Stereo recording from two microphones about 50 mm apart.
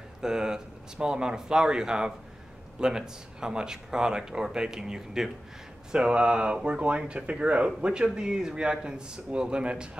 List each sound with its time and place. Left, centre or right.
0.2 s speech: centre